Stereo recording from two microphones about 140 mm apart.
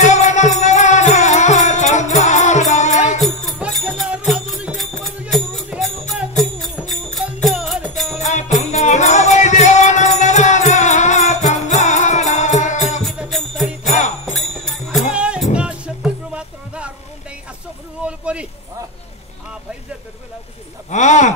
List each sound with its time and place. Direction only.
0.0 s music: 55° left (ahead or behind)
3.2 s music: centre (ahead or behind)
7.4 s music: centre (ahead or behind)
8.2 s music: 55° left (ahead or behind)
13.0 s jingle bell: centre (ahead or behind)
15.1 s music: 5° right (ahead or behind)
18.0 s a sound: 10° right (ahead or behind)
20.9 s a sound: 60° left (ahead or behind)